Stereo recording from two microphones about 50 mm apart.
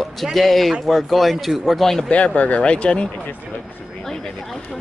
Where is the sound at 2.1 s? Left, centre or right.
Left.